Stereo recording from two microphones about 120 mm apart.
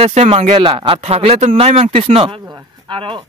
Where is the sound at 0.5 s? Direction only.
45° right (ahead or behind).